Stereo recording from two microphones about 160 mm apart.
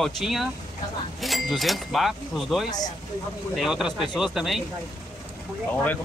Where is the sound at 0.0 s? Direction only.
Centre (ahead or behind).